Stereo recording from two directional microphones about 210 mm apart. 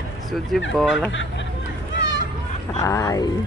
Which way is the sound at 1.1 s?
60° left (ahead or behind).